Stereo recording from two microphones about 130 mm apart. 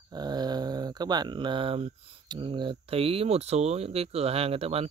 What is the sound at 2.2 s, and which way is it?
Speech, 35° right (ahead or behind).